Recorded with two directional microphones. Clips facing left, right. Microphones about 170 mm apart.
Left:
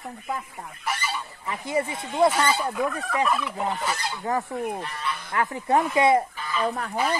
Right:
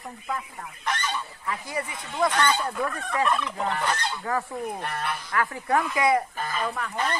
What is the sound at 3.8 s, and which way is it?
Speech, 5° left (ahead or behind).